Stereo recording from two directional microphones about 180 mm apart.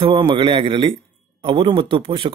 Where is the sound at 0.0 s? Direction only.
30° right (ahead or behind).